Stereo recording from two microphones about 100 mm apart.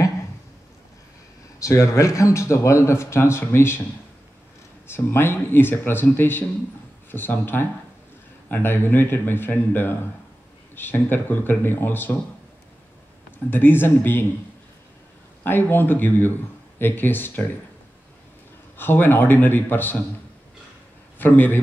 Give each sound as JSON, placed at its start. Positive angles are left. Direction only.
{"t": 1.6, "sound": "speech", "side_deg": 30}
{"t": 4.8, "sound": "speech", "side_deg": 25}
{"t": 13.5, "sound": "speech", "side_deg": 20}
{"t": 15.4, "sound": "speech", "side_deg": 20}
{"t": 18.8, "sound": "speech", "side_deg": 20}
{"t": 21.2, "sound": "speech", "side_deg": 20}